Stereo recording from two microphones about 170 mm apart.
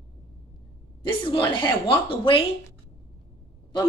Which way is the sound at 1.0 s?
30° left (ahead or behind).